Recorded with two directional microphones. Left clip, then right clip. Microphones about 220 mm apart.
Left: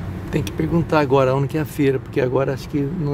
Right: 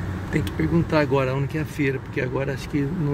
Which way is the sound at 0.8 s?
15° left (ahead or behind).